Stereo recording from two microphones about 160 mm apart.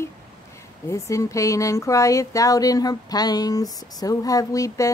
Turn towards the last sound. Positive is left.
turn(degrees=20)  # may be behind; listen again after turning